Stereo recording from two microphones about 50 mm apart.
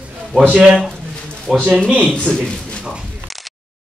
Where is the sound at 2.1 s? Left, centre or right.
Centre.